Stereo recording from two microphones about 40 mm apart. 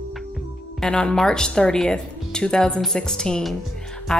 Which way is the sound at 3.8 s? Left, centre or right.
Centre.